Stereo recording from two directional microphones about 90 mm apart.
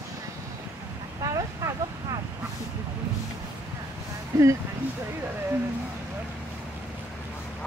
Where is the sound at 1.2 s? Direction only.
35° right (ahead or behind).